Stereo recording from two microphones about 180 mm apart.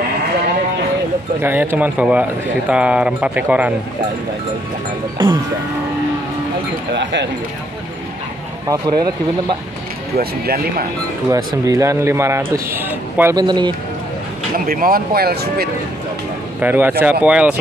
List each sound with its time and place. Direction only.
1.4 s a man's voice: 10° right (ahead or behind)
6.9 s speech: 80° right
8.6 s speech: 25° right (ahead or behind)
10.1 s speech: 55° right (ahead or behind)
11.2 s a man's voice: 20° right (ahead or behind)
13.4 s speech: 25° right (ahead or behind)
14.7 s speech: 55° right (ahead or behind)
16.6 s a man's voice: 10° right (ahead or behind)